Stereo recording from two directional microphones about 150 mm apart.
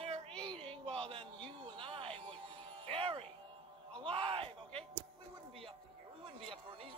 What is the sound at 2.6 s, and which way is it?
Music, 40° right (ahead or behind).